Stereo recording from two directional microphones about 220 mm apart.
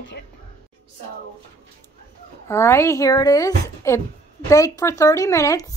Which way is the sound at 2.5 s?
10° left (ahead or behind).